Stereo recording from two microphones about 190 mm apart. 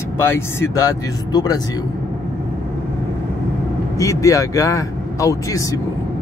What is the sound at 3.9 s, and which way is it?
Speech, 15° left (ahead or behind).